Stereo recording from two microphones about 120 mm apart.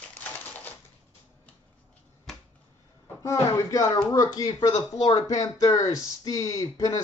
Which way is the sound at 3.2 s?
25° left (ahead or behind).